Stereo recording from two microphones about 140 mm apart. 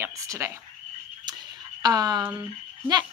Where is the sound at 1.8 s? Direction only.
30° right (ahead or behind).